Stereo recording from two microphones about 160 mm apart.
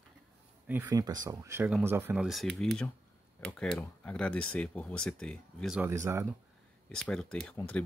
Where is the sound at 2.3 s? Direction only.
5° left (ahead or behind).